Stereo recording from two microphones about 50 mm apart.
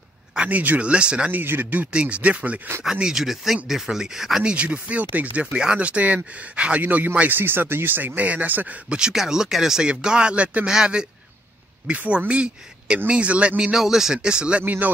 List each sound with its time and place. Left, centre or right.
0.5 s speech: right
1.3 s speech: right
1.9 s speech: right
2.8 s speech: centre
4.5 s speech: right
8.9 s speech: centre
11.9 s speech: right
13.7 s speech: centre
14.6 s speech: right